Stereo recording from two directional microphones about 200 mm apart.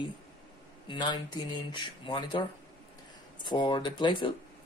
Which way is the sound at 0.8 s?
20° left (ahead or behind).